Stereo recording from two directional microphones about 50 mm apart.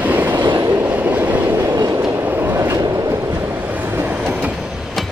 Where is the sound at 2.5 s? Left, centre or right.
Right.